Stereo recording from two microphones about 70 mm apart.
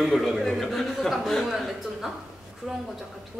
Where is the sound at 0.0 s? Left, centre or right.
Centre.